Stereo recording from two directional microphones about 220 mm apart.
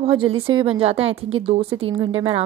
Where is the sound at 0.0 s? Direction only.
25° right (ahead or behind).